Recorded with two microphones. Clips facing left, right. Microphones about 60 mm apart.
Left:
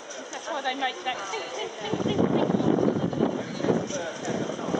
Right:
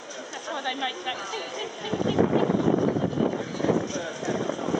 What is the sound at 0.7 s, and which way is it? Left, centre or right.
Speech, left.